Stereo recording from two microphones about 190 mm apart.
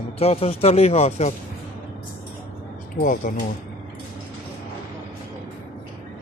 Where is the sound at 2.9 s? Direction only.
45° left (ahead or behind).